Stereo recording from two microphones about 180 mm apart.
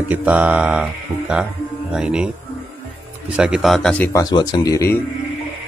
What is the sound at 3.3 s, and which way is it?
Speech, 5° right (ahead or behind).